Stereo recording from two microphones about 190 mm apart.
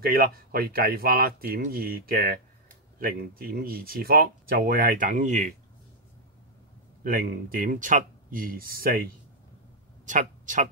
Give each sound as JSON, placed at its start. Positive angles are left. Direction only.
{"t": 0.0, "sound": "speech", "side_deg": -50}
{"t": 3.0, "sound": "speech", "side_deg": -50}
{"t": 7.0, "sound": "speech", "side_deg": -50}